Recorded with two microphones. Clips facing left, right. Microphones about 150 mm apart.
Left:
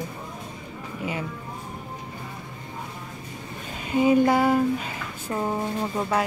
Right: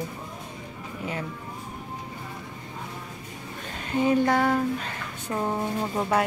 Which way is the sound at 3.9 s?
10° left (ahead or behind).